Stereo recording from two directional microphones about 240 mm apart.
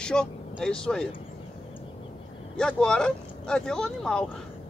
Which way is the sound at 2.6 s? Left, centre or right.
Centre.